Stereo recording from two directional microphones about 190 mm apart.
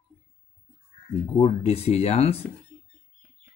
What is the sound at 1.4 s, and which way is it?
Speech, 30° left (ahead or behind).